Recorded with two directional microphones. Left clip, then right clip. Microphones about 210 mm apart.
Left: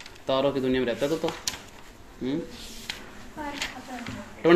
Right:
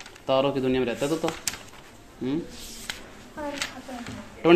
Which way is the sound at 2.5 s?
35° right (ahead or behind).